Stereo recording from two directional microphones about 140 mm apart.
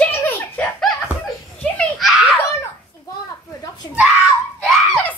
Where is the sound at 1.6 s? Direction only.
10° left (ahead or behind).